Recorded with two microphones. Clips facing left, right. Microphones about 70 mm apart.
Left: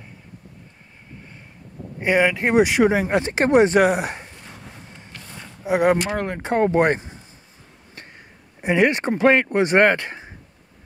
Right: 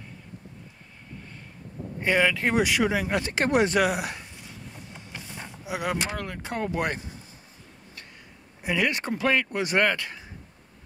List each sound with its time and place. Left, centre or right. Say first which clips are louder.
2.0 s speech: left 4 dB; centre
5.6 s speech: left 11 dB; left
8.5 s speech: left 8 dB; left